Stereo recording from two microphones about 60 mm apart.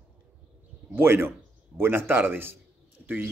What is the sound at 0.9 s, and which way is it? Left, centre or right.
Speech, right.